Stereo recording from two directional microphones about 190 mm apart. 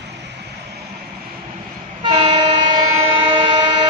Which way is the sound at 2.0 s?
25° right (ahead or behind).